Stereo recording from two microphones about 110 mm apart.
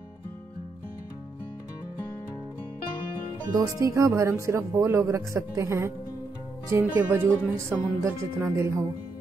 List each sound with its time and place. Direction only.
3.5 s speech: 30° right (ahead or behind)
7.1 s speech: 15° right (ahead or behind)